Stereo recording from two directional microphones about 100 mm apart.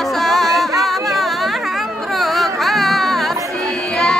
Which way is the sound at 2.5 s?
Centre (ahead or behind).